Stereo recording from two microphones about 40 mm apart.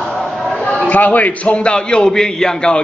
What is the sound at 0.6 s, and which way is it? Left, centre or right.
A man's voice, left.